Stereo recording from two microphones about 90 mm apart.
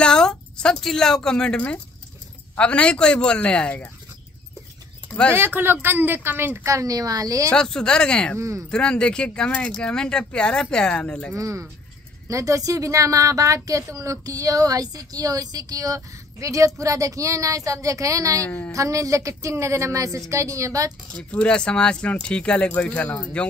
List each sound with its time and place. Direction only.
0.0 s a woman's voice: 5° left (ahead or behind)
5.3 s a woman's voice: 25° right (ahead or behind); by 7.4 s 40° right (ahead or behind)
7.4 s speech: 10° left (ahead or behind)
8.4 s a woman's voice: 35° right (ahead or behind)
8.6 s speech: 10° left (ahead or behind)
11.3 s a woman's voice: 35° right (ahead or behind)
18.4 s speech: 15° left (ahead or behind)
18.7 s a woman's voice: 40° right (ahead or behind)
21.1 s speech: 10° left (ahead or behind)